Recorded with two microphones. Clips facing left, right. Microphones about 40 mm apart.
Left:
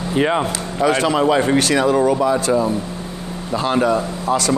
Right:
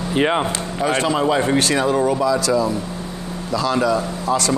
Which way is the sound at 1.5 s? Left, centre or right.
Left.